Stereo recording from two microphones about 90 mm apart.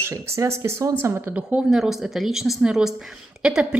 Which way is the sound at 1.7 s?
5° right (ahead or behind).